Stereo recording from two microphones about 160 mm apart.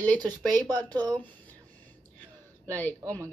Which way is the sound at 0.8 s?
25° right (ahead or behind).